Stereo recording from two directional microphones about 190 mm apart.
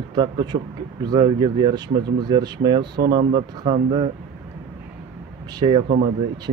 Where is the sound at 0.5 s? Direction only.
30° right (ahead or behind).